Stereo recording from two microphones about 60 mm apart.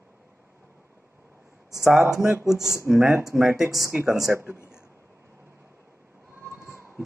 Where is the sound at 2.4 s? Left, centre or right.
Centre.